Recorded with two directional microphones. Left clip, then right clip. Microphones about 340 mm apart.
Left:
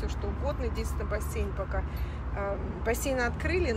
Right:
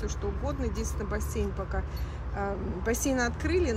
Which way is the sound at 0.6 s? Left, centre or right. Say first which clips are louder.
Even; centre.